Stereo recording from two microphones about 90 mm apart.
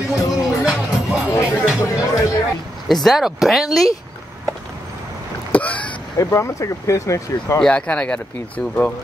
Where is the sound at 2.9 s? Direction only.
Centre (ahead or behind).